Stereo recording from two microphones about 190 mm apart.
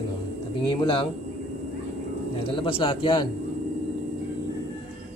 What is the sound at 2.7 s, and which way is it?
Speech, 25° left (ahead or behind).